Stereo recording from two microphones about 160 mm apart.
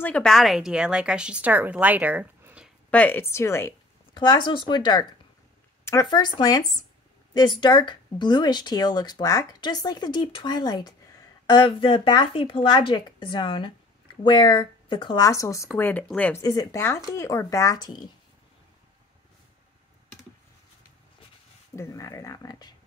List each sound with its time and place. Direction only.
0.0 s speech: 5° left (ahead or behind)
2.9 s a woman's voice: 10° left (ahead or behind)
4.1 s speech: 30° left (ahead or behind)
21.7 s speech: 20° left (ahead or behind)